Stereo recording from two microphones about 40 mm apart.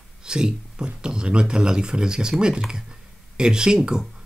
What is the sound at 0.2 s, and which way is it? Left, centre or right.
Speech, centre.